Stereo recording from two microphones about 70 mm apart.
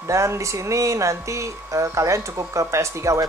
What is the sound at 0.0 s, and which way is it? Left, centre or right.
Speech, right.